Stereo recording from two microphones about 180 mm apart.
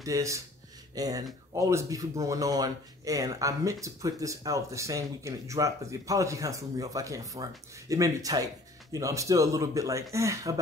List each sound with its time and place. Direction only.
0.0 s speech: 15° right (ahead or behind)